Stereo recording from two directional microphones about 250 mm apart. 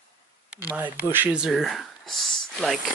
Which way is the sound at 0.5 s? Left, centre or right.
Centre.